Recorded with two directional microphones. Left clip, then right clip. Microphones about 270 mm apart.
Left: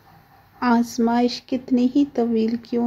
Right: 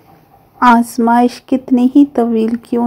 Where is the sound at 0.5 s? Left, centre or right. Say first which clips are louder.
Right 11 dB; centre.